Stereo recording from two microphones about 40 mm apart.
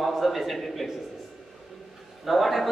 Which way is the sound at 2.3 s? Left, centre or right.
Centre.